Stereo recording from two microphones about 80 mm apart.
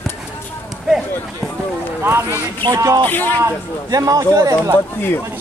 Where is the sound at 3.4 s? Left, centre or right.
Right.